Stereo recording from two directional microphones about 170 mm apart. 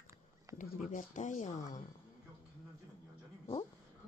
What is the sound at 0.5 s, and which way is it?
Speech, 50° left (ahead or behind).